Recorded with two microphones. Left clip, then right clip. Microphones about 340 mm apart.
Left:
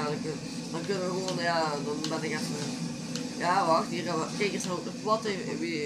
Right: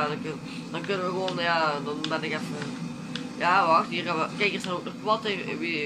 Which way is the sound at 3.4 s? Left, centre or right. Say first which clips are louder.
Right 4 dB; centre.